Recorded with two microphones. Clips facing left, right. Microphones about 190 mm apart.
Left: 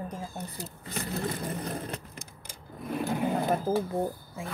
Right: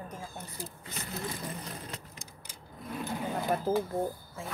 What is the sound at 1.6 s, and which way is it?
Vehicle, 55° left (ahead or behind).